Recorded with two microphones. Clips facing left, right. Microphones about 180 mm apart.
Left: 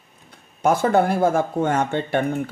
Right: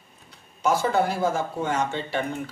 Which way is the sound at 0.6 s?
55° left (ahead or behind).